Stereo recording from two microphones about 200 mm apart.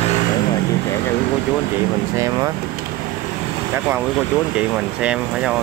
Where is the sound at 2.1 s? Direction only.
15° right (ahead or behind).